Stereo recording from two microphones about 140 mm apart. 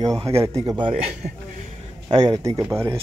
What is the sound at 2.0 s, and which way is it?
Speech, 30° right (ahead or behind).